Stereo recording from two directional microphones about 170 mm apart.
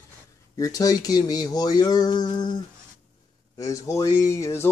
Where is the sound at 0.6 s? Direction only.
20° left (ahead or behind).